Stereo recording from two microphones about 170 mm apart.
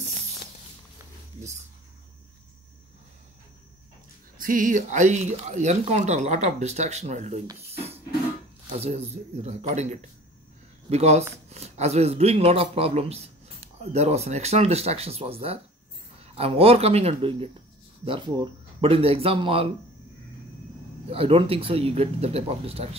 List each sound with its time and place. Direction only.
4.4 s speech: 50° right (ahead or behind)
7.5 s a sound: 35° right (ahead or behind)
8.7 s speech: 40° right (ahead or behind)
21.1 s speech: 35° right (ahead or behind)